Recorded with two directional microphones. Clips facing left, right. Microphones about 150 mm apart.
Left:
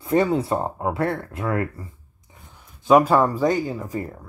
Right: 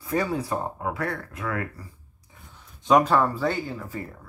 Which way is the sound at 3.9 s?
40° left (ahead or behind).